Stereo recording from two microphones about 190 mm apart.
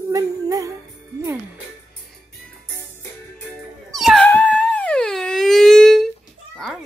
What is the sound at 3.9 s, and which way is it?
Dog, centre (ahead or behind).